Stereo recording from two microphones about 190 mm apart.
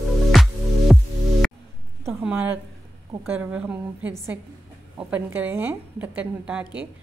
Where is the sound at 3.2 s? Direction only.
10° right (ahead or behind).